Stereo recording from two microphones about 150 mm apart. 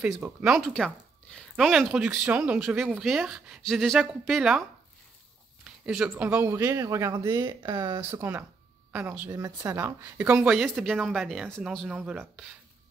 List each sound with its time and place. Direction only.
0.0 s speech: 5° right (ahead or behind); by 8.0 s 30° right (ahead or behind)
8.1 s a woman's voice: 15° right (ahead or behind)
9.4 s a woman's voice: 25° right (ahead or behind); by 12.4 s 5° right (ahead or behind)